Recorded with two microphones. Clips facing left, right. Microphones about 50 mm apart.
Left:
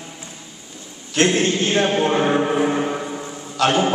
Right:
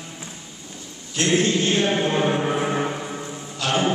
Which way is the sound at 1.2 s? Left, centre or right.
Left.